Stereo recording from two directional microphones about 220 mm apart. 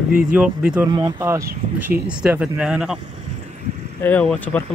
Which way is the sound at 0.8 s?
20° right (ahead or behind).